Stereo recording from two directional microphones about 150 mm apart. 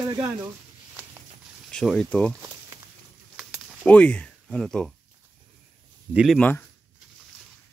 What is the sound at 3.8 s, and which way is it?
Speech, 5° left (ahead or behind).